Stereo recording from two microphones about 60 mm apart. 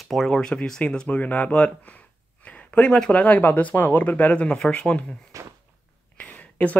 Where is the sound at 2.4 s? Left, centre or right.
Left.